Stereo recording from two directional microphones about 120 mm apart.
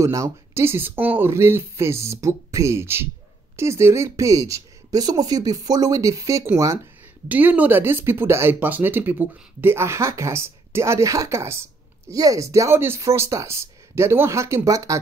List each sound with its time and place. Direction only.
0.0 s speech: 25° right (ahead or behind)